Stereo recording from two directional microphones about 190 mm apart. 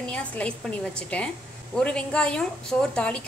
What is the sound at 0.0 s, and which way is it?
A woman's voice, 5° left (ahead or behind).